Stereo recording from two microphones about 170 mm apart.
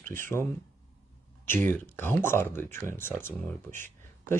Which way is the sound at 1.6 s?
10° left (ahead or behind).